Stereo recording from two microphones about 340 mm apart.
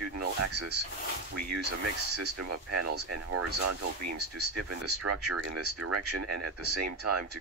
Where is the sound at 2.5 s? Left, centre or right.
Right.